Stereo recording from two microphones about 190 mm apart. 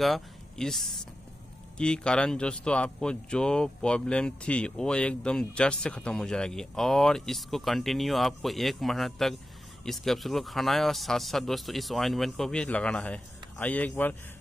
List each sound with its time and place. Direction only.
0.0 s speech: centre (ahead or behind)